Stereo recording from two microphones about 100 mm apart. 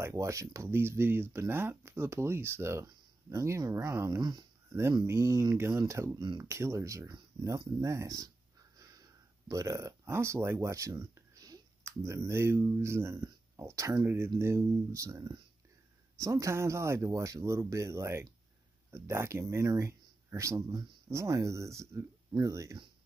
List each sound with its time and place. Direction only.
0.0 s speech: 30° right (ahead or behind)
4.7 s speech: 25° right (ahead or behind)
6.1 s speech: 50° right (ahead or behind)
6.4 s speech: 30° right (ahead or behind)